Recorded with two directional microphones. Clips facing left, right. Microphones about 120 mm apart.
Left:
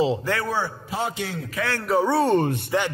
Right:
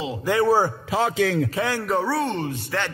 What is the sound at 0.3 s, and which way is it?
Speech, 15° right (ahead or behind).